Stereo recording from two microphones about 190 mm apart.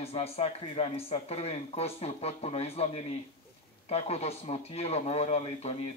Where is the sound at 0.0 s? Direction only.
30° left (ahead or behind).